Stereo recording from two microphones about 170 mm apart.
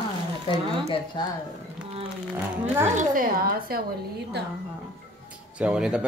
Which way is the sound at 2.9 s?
55° right (ahead or behind).